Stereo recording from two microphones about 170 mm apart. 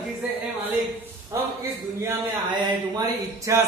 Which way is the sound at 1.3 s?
15° right (ahead or behind).